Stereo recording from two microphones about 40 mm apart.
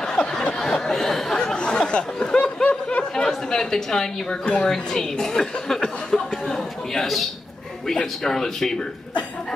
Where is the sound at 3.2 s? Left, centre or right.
Centre.